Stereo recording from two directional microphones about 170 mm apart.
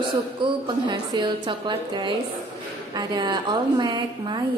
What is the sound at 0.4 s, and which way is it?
A woman's voice, 25° right (ahead or behind).